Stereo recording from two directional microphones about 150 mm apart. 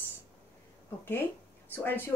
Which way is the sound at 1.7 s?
15° left (ahead or behind).